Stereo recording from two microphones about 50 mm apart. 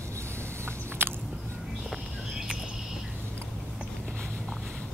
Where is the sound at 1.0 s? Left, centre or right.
Right.